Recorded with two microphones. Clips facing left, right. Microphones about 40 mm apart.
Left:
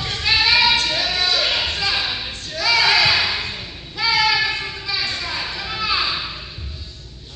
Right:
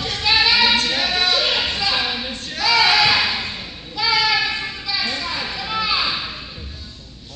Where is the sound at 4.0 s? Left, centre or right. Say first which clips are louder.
Left 1 dB; centre.